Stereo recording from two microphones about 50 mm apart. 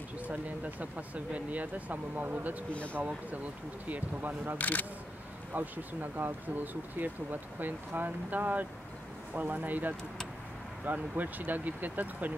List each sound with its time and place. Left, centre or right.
0.3 s speech: right
2.7 s speech: left
3.9 s speech: right
4.6 s speech: left
5.5 s speech: right